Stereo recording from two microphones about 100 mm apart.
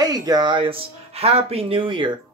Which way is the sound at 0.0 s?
40° right (ahead or behind).